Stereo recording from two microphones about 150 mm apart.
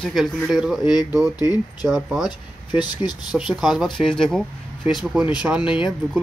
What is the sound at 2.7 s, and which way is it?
Speech, 30° left (ahead or behind).